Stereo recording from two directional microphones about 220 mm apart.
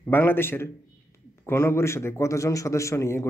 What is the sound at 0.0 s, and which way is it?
A man's voice, 10° left (ahead or behind).